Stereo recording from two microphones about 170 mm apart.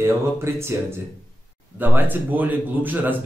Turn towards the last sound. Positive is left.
turn(degrees=-10)  # may be behind; listen again after turning